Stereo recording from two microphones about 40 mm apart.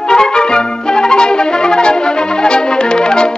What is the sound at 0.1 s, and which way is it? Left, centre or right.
Music, centre.